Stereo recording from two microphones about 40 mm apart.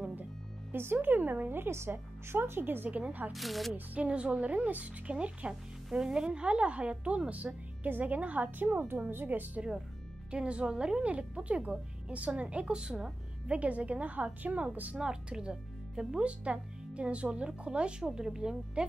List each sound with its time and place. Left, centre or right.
0.9 s speech: right
1.6 s a woman's voice: right
2.6 s speech: right
2.9 s a woman's voice: right
3.3 s speech: centre
3.7 s a woman's voice: right
5.5 s speech: centre
8.0 s a woman's voice: right
8.5 s a woman's voice: right
10.3 s a woman's voice: right
15.0 s a woman's voice: centre